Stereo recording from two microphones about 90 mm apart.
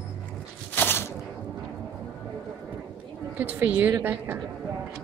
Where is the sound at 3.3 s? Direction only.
20° right (ahead or behind).